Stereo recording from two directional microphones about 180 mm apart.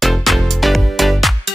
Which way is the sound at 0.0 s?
Centre (ahead or behind).